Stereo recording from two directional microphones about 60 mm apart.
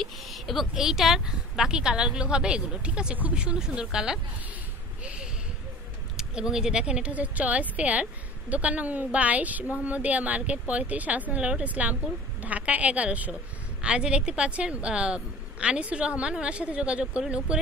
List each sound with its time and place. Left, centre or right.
0.0 s speech: centre
6.1 s speech: centre
17.0 s speech: centre